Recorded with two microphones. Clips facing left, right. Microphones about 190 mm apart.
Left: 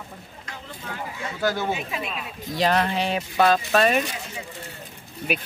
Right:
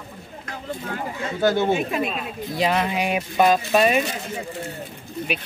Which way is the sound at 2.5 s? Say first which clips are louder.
Even; 5° right (ahead or behind).